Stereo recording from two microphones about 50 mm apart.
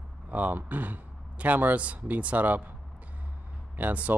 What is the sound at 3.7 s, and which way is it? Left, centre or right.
Speech, right.